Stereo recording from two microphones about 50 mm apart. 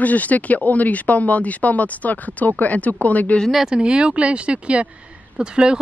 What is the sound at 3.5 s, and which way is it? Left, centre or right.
Speech, centre.